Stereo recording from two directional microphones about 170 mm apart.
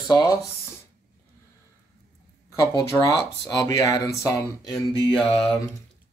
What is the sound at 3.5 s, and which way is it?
Speech, 20° left (ahead or behind).